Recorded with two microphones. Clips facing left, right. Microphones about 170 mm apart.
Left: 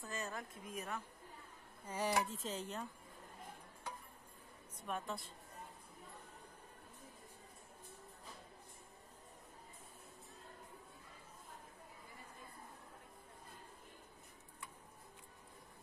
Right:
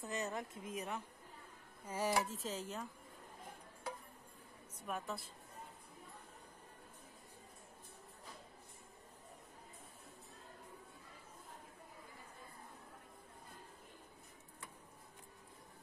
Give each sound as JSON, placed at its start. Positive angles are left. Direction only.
{"t": 0.0, "sound": "a woman's voice", "side_deg": -20}
{"t": 1.9, "sound": "speech", "side_deg": -5}
{"t": 4.8, "sound": "speech", "side_deg": -5}